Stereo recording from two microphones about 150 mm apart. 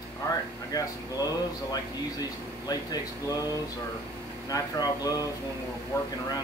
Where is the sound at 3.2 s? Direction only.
25° left (ahead or behind).